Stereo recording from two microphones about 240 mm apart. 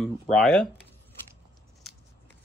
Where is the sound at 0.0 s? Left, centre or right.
Centre.